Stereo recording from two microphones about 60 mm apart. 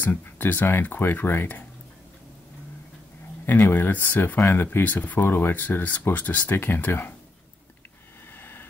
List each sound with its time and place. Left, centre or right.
0.0 s speech: left
3.4 s speech: left
8.4 s vehicle: left